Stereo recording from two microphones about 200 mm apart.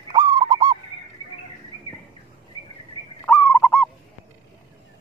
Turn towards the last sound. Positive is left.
turn(degrees=10)  # may be behind; listen again after turning